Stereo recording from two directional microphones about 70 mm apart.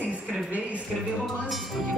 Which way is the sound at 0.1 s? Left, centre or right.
Centre.